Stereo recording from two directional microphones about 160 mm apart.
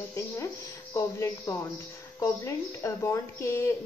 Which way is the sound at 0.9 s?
20° left (ahead or behind).